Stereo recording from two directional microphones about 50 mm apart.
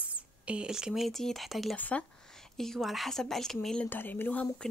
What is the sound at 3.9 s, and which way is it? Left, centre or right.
Speech, left.